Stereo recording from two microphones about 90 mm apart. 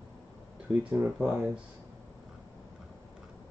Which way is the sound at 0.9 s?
20° right (ahead or behind).